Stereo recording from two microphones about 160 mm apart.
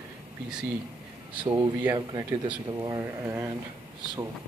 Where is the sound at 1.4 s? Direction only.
25° right (ahead or behind).